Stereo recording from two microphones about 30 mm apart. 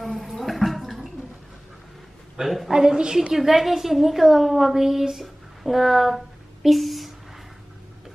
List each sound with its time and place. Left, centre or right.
0.0 s gargling: centre
2.4 s a woman's voice: centre
2.7 s a woman's voice: centre
3.3 s a woman's voice: centre
5.2 s a sound: centre